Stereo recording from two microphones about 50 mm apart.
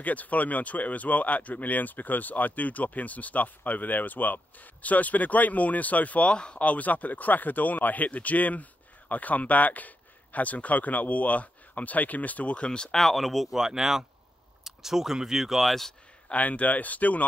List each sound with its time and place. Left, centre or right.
0.0 s speech: left
12.9 s speech: centre
16.3 s speech: left